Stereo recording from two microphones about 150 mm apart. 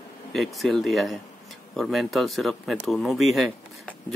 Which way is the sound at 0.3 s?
Centre (ahead or behind).